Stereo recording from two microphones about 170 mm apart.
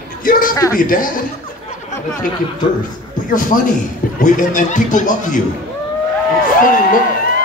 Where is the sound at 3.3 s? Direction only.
50° left (ahead or behind).